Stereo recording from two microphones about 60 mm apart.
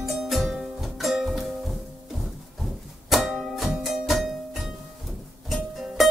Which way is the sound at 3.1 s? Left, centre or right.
Centre.